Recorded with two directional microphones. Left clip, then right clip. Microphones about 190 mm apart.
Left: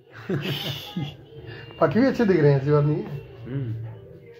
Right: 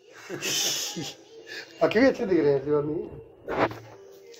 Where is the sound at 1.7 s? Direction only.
55° right (ahead or behind).